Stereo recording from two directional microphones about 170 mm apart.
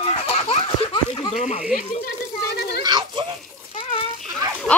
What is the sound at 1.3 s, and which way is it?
Speech, 40° left (ahead or behind).